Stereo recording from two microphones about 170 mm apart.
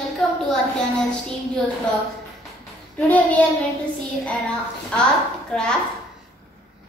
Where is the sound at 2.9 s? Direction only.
10° left (ahead or behind).